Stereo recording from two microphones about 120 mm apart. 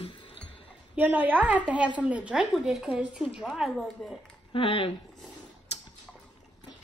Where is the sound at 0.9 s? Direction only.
15° right (ahead or behind).